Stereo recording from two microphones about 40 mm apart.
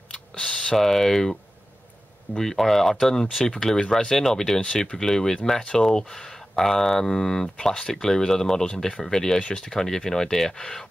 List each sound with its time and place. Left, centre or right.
0.1 s a sound: centre
0.7 s speech: centre
2.3 s speech: centre